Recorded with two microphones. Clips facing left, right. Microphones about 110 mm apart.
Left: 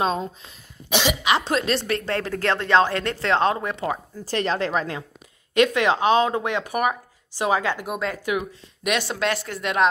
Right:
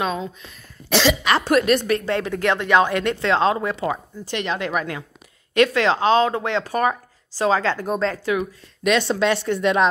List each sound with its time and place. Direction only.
0.4 s speech: 20° left (ahead or behind)
2.8 s speech: 20° right (ahead or behind)
3.9 s speech: 35° left (ahead or behind)
5.5 s speech: 20° left (ahead or behind); by 9.8 s 5° left (ahead or behind)